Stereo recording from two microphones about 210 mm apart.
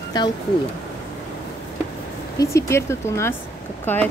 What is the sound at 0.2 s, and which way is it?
Speech, 20° left (ahead or behind).